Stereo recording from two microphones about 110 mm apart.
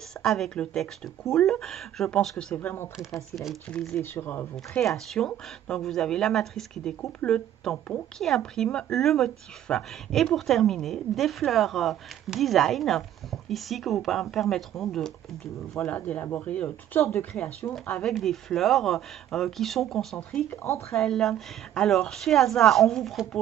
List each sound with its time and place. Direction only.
0.2 s speech: 5° left (ahead or behind)
3.3 s speech: centre (ahead or behind)
4.0 s speech: 20° left (ahead or behind)
4.7 s speech: 5° left (ahead or behind)
20.4 s speech: 25° left (ahead or behind)
20.9 s speech: 5° left (ahead or behind)